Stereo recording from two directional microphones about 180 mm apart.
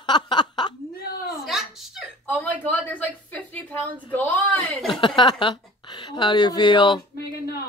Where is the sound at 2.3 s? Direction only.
10° left (ahead or behind).